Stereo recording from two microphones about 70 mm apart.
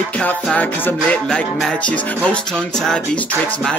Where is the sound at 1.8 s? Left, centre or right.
Centre.